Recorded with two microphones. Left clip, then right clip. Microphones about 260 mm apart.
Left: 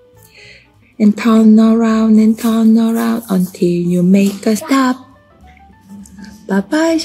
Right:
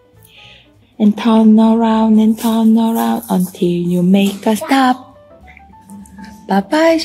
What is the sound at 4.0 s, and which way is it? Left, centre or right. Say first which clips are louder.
Speech: right 1 dB; centre.